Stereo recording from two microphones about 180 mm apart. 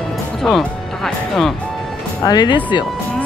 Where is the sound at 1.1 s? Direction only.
Centre (ahead or behind).